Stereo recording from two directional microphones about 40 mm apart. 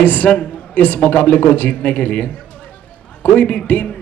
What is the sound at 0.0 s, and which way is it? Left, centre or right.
A man's voice, left.